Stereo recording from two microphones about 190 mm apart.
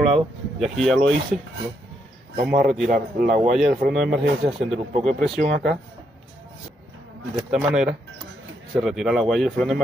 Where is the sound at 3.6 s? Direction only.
Centre (ahead or behind).